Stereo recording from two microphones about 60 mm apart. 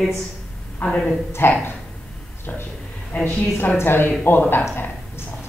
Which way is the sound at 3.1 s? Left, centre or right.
Left.